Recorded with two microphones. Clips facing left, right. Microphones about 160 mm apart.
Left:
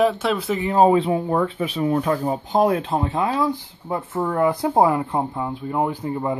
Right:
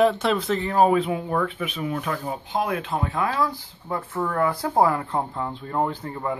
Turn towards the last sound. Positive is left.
turn(degrees=15)  # may be behind; listen again after turning